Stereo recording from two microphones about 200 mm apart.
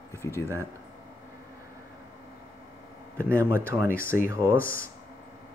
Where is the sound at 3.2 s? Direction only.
10° right (ahead or behind).